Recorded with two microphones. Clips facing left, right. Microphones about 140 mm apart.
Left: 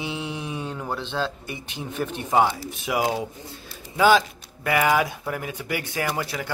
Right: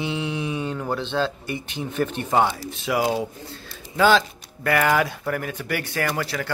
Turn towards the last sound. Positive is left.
turn(degrees=15)  # may be behind; listen again after turning